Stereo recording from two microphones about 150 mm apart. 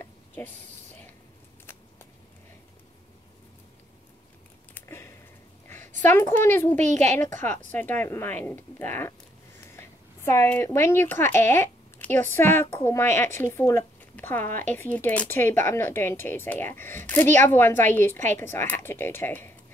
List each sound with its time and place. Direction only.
4.7 s a sound: 15° left (ahead or behind)
6.0 s speech: 15° left (ahead or behind)
6.8 s a woman's voice: 50° right (ahead or behind)
7.3 s speech: 15° left (ahead or behind)